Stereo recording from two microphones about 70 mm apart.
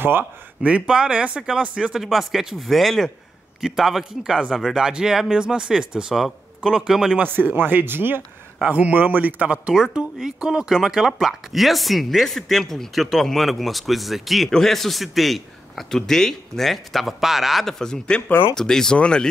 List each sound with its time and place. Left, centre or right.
0.0 s speech: right
0.6 s speech: centre
2.0 s speech: centre
7.2 s speech: right
8.6 s speech: centre